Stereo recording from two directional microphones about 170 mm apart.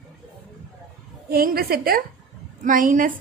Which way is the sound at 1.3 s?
65° right (ahead or behind).